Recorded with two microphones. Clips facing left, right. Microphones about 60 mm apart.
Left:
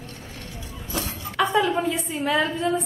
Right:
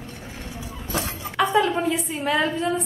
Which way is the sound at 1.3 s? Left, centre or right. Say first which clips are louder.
Right 1 dB; centre.